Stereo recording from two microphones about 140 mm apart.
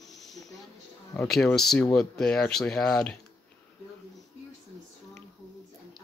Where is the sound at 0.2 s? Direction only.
Centre (ahead or behind).